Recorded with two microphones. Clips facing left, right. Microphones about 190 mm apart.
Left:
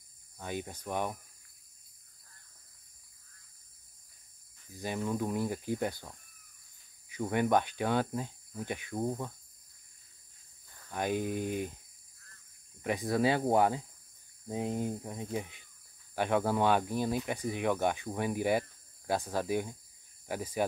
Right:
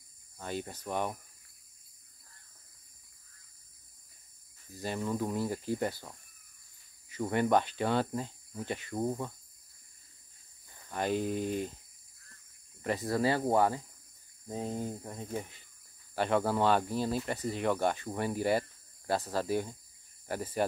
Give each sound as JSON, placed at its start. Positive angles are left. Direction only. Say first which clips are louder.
{"t": 0.8, "sound": "speech", "louder": "even", "side_deg": 10}
{"t": 4.8, "sound": "speech", "louder": "even", "side_deg": 5}
{"t": 7.2, "sound": "speech", "louder": "right 1 dB", "side_deg": 5}
{"t": 8.9, "sound": "speech", "louder": "right 1 dB", "side_deg": 0}
{"t": 10.9, "sound": "speech", "louder": "right 1 dB", "side_deg": 10}
{"t": 13.2, "sound": "speech", "louder": "left 1 dB", "side_deg": 15}